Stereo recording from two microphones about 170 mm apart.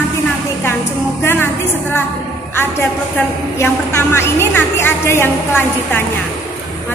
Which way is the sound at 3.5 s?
15° left (ahead or behind).